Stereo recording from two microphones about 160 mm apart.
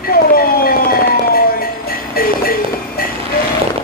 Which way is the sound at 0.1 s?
70° left (ahead or behind).